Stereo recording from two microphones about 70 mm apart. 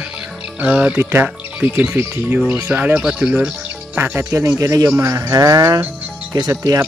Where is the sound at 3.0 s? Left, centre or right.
Centre.